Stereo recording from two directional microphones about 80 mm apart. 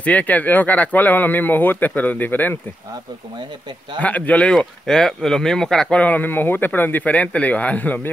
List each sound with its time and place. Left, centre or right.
0.0 s speech: centre
4.0 s speech: centre